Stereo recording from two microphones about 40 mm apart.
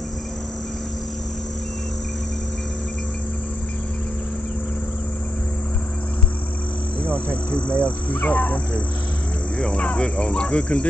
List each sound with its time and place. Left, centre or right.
7.1 s speech: left
8.1 s speech: left
9.6 s speech: left